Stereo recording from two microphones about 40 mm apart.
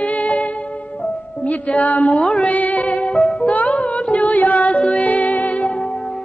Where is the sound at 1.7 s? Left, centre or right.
Left.